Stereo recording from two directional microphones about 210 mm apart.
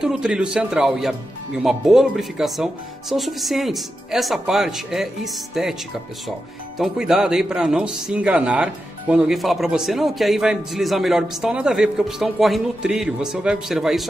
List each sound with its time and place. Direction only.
0.0 s a man's voice: 5° right (ahead or behind)
6.8 s a man's voice: centre (ahead or behind)